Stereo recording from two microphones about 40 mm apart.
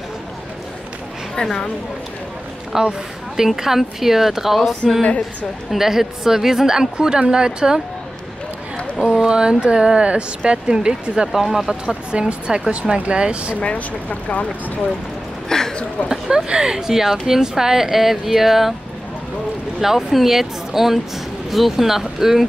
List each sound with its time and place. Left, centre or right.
1.3 s a woman's voice: centre
2.7 s a woman's voice: centre
5.0 s speech: left
5.7 s a woman's voice: centre
9.2 s speech: right
11.3 s a woman's voice: centre
11.7 s speech: centre
13.6 s speech: left
15.4 s a sound: centre
16.1 s a woman's voice: centre
19.8 s a woman's voice: centre